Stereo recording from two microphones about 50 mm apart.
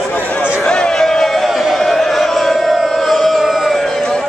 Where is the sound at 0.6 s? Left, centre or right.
Centre.